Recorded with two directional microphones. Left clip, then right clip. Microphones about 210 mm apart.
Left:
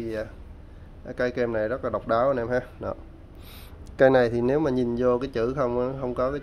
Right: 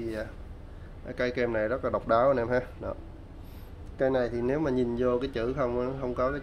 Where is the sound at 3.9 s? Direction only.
35° left (ahead or behind).